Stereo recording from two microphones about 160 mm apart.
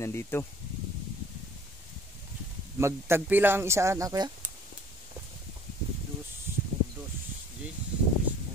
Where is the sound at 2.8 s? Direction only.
15° right (ahead or behind).